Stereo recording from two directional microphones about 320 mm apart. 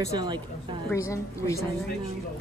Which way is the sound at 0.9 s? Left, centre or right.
Centre.